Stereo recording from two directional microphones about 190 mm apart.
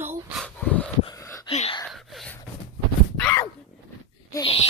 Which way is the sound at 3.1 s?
15° left (ahead or behind).